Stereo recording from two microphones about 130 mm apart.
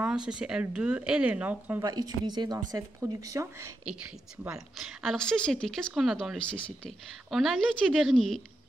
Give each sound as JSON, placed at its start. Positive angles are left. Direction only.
{"t": 0.0, "sound": "speech", "side_deg": -5}
{"t": 1.8, "sound": "speech", "side_deg": -30}
{"t": 3.9, "sound": "a woman's voice", "side_deg": -10}